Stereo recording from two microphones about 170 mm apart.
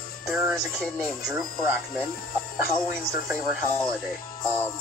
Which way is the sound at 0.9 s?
5° left (ahead or behind).